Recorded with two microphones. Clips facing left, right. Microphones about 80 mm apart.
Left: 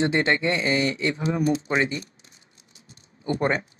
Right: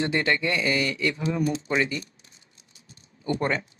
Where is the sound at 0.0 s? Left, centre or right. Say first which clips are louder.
Left 3 dB; left.